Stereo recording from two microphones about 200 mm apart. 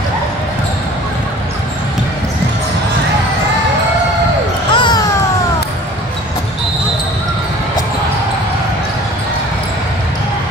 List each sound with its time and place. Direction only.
4.7 s music: 25° left (ahead or behind)